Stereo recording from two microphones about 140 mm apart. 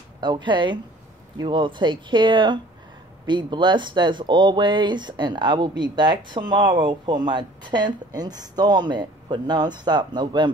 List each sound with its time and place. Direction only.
0.2 s speech: 35° right (ahead or behind)